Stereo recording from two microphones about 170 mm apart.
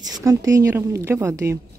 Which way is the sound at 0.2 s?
20° right (ahead or behind).